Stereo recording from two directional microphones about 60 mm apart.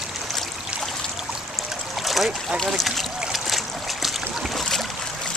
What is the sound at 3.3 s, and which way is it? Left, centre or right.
Boat, centre.